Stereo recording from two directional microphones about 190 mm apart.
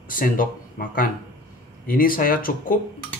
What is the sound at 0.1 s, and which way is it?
Speech, 45° left (ahead or behind).